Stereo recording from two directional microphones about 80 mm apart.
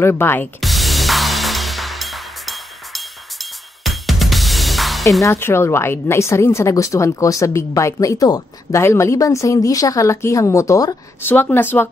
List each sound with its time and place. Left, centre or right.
0.0 s speech: left
0.6 s music: centre
5.3 s a woman's voice: left
11.2 s speech: left